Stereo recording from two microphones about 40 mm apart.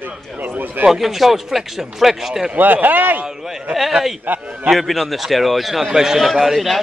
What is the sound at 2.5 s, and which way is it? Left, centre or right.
Speech, right.